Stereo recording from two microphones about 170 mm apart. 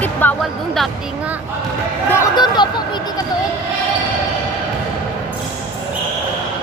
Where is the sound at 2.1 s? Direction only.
25° left (ahead or behind).